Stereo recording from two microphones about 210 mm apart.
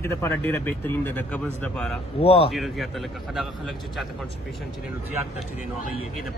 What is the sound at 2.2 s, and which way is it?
Speech, 30° left (ahead or behind).